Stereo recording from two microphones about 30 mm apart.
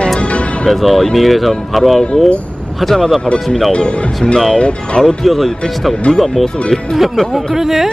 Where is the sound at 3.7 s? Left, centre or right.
Left.